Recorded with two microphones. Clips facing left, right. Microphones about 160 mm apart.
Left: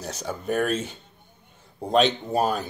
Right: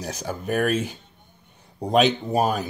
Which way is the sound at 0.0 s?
10° right (ahead or behind).